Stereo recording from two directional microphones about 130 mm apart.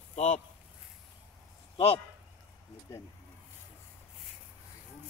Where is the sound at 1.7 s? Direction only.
45° left (ahead or behind).